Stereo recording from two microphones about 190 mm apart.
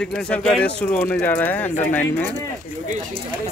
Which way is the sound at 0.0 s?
5° left (ahead or behind).